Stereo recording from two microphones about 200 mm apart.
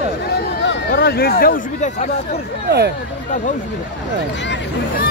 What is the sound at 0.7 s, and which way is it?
Speech, 50° left (ahead or behind).